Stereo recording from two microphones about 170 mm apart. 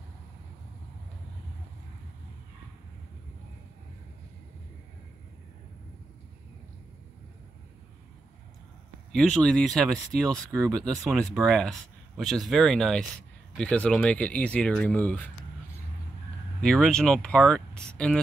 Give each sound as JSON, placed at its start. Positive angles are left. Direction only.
{"t": 9.1, "sound": "speech", "side_deg": 5}
{"t": 16.6, "sound": "speech", "side_deg": 0}